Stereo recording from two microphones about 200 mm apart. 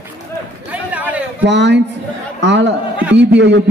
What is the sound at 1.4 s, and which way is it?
A man's voice, 60° right (ahead or behind).